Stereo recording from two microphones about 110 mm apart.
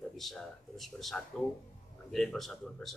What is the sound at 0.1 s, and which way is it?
A man's voice, centre (ahead or behind).